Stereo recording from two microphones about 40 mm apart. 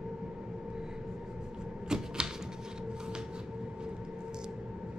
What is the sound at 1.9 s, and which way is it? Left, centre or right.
Typewriter, centre.